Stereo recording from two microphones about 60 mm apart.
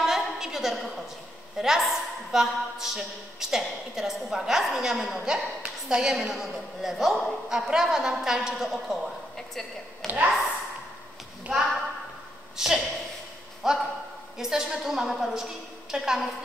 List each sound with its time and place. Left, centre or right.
0.0 s a sound: centre
1.6 s a woman's voice: centre
10.0 s speech: right
11.5 s a woman's voice: centre